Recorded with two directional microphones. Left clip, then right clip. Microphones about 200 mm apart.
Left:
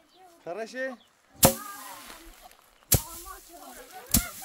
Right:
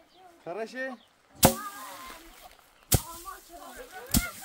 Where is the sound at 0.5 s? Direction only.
25° left (ahead or behind).